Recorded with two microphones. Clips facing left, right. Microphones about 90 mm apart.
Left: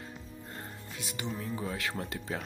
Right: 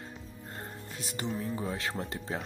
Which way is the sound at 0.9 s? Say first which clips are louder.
Right 1 dB; 40° right (ahead or behind).